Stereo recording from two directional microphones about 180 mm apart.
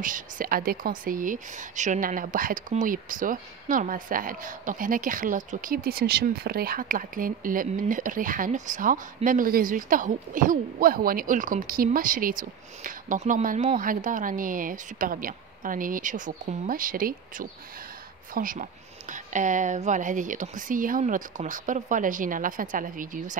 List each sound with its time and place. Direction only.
0.0 s a woman's voice: 50° right (ahead or behind)